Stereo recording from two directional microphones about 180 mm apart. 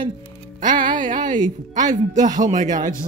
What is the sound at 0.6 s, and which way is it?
A woman's voice, 45° right (ahead or behind).